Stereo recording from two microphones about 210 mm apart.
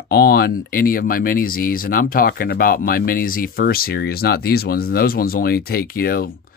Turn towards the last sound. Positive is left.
turn(degrees=45)  # may be behind; listen again after turning